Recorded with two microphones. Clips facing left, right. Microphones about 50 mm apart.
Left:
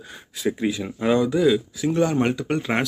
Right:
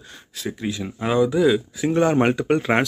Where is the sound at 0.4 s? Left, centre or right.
Centre.